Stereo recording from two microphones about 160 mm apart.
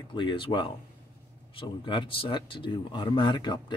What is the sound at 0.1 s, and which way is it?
Speech, 30° left (ahead or behind).